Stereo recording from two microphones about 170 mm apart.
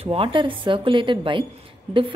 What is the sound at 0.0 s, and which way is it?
A woman's voice, 35° right (ahead or behind).